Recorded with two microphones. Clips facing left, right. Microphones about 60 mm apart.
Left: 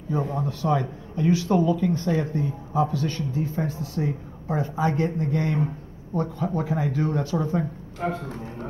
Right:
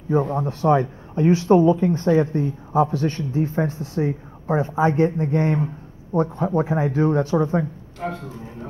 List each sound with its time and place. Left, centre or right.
0.3 s speech: right
8.0 s speech: centre